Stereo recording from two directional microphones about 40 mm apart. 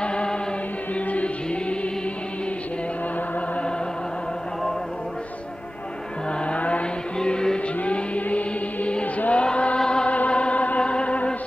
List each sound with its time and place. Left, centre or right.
0.0 s choir: left
0.9 s music: left
6.4 s vehicle: left
7.2 s music: centre
7.8 s music: left
9.3 s a sound: left
9.8 s chant: left
10.0 s music: left